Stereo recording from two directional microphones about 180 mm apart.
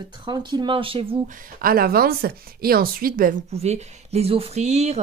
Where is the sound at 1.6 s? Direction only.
55° right (ahead or behind).